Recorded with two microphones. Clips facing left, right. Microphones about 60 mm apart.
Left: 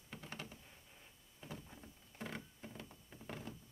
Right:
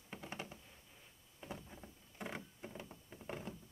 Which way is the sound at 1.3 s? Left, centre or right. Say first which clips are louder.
Right 2 dB; centre.